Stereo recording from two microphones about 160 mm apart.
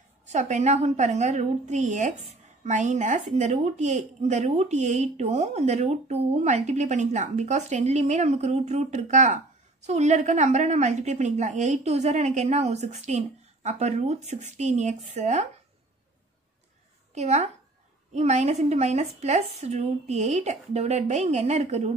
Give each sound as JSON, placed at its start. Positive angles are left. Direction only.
{"t": 0.3, "sound": "a woman's voice", "side_deg": -50}
{"t": 17.1, "sound": "a woman's voice", "side_deg": -45}